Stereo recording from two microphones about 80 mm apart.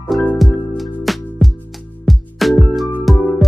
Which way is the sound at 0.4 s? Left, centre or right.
Centre.